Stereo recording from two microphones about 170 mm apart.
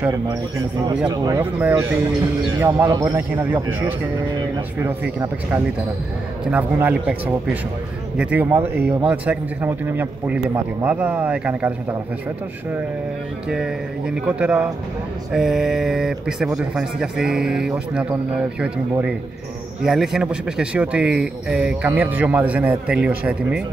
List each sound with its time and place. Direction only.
1.0 s speech: 20° right (ahead or behind)
13.5 s speech: 5° right (ahead or behind)